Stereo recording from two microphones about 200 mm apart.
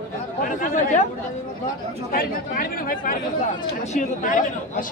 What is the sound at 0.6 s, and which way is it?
Speech, 40° left (ahead or behind).